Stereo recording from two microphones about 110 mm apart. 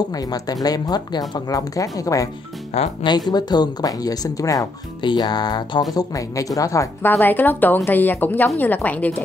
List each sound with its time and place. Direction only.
0.1 s speech: 35° left (ahead or behind)
7.1 s a woman's voice: 15° left (ahead or behind)